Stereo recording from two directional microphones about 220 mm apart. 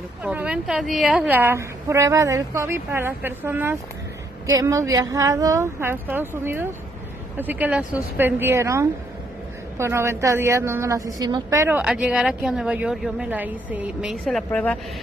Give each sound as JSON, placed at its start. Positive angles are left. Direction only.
{"t": 0.2, "sound": "a woman's voice", "side_deg": -5}